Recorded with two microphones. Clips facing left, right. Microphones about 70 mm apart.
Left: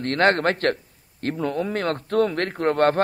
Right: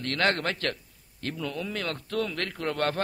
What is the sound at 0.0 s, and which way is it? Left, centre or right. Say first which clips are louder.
A man's voice: left 7 dB; left.